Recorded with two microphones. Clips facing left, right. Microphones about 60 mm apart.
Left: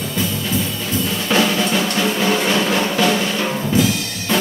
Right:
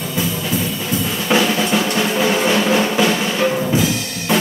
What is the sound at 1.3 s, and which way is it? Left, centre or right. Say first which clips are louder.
Music: right 2 dB; centre.